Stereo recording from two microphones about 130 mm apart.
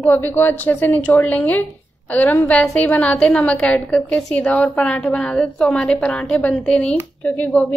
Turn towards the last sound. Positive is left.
turn(degrees=10)  # may be behind; listen again after turning